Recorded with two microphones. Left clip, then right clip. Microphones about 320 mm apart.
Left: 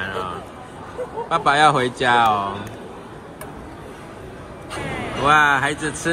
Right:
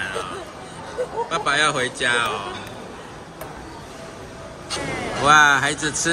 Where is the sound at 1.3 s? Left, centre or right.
Centre.